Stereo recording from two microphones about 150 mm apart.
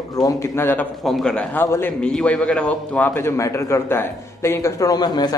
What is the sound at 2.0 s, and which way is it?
A man's voice, 5° left (ahead or behind).